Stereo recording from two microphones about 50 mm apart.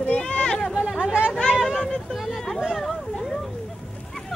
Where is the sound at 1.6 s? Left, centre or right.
Centre.